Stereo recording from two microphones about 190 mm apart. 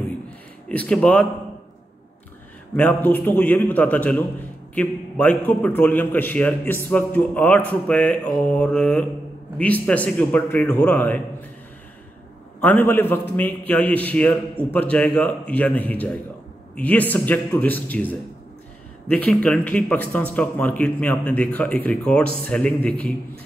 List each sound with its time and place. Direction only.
0.7 s a man's voice: 5° left (ahead or behind)
2.7 s a man's voice: 10° left (ahead or behind)
12.6 s a man's voice: 10° left (ahead or behind)